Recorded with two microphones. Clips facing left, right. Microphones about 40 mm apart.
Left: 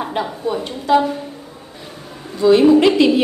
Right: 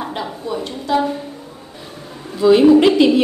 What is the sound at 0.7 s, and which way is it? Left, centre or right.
Speech, left.